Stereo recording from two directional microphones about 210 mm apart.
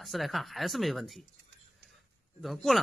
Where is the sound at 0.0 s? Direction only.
Centre (ahead or behind).